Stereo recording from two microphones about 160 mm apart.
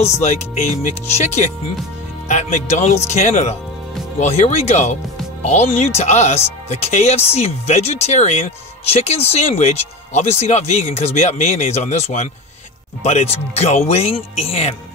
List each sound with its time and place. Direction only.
0.2 s speech: 45° left (ahead or behind)